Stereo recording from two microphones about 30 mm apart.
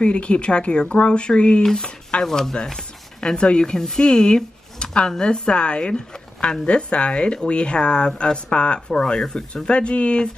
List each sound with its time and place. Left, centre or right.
0.0 s speech: left
1.6 s speech: centre
3.2 s speech: left
4.7 s a sound: left
5.1 s speech: left
8.8 s speech: left
9.7 s speech: left